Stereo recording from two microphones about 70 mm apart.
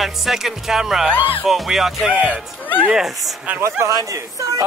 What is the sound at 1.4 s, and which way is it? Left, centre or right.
Speech, centre.